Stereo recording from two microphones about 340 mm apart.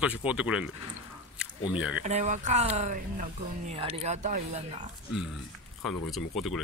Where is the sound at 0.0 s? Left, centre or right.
Centre.